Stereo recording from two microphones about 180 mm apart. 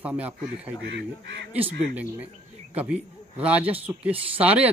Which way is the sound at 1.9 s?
10° right (ahead or behind).